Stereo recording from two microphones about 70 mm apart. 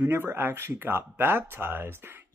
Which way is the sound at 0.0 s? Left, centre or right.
Right.